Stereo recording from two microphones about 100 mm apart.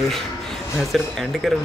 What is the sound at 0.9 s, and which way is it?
Speech, centre (ahead or behind).